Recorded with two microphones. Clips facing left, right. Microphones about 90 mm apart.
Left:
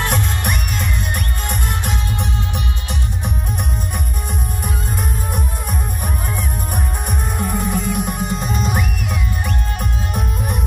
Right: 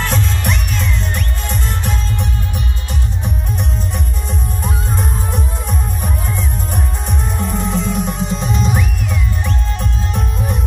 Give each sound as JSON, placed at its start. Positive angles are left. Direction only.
{"t": 0.1, "sound": "music", "side_deg": 55}
{"t": 7.3, "sound": "music", "side_deg": 5}